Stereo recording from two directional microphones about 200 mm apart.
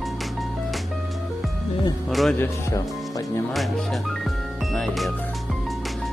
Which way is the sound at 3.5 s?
Centre (ahead or behind).